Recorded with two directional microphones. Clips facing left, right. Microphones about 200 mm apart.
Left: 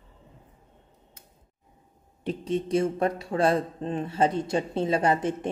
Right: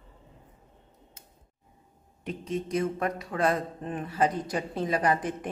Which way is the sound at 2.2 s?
30° left (ahead or behind).